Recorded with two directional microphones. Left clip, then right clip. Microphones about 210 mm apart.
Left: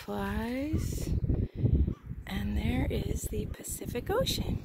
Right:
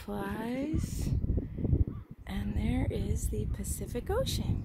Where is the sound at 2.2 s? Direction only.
Centre (ahead or behind).